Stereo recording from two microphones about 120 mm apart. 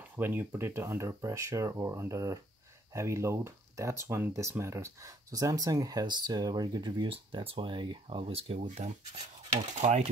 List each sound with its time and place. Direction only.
0.1 s speech: 20° right (ahead or behind); by 10.0 s 70° right (ahead or behind)